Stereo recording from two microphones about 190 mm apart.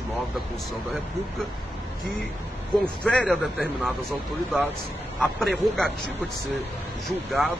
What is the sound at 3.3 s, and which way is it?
Speech, centre (ahead or behind).